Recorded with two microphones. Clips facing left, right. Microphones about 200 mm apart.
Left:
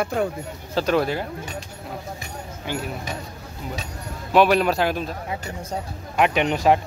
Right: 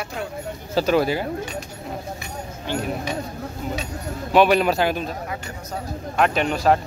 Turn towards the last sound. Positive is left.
turn(degrees=20)  # may be behind; listen again after turning